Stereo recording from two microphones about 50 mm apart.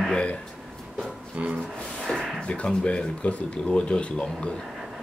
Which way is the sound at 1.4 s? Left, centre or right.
Right.